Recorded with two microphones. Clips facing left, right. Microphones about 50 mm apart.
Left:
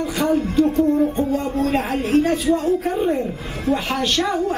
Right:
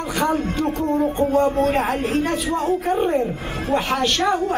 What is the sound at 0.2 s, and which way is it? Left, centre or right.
Speech, right.